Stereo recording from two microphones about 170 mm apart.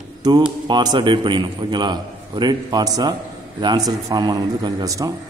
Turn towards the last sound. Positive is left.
turn(degrees=-20)  # may be behind; listen again after turning